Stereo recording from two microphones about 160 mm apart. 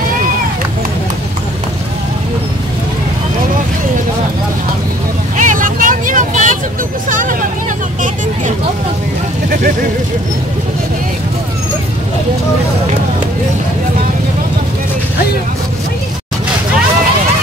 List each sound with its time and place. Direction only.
5.4 s vehicle: 55° right (ahead or behind)